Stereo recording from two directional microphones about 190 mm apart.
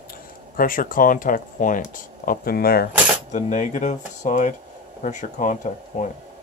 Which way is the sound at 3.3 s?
40° left (ahead or behind).